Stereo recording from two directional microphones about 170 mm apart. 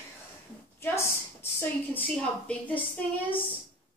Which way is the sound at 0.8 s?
15° left (ahead or behind).